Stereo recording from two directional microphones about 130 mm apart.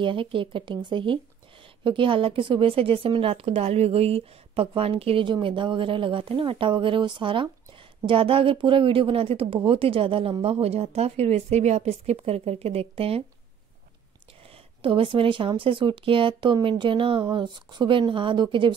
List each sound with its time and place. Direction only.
0.0 s a woman's voice: 40° right (ahead or behind)
14.8 s a woman's voice: 40° right (ahead or behind)